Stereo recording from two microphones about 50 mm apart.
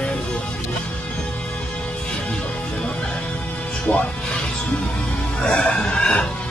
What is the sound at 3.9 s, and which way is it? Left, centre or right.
Speech, left.